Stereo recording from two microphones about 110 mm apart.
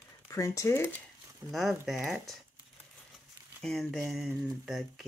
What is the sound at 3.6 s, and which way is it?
Speech, centre (ahead or behind).